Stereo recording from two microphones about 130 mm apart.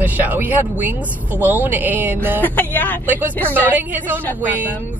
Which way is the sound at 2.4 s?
15° left (ahead or behind).